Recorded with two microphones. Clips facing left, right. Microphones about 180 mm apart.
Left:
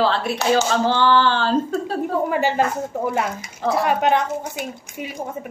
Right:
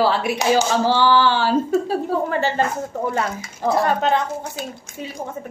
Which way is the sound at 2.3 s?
10° left (ahead or behind).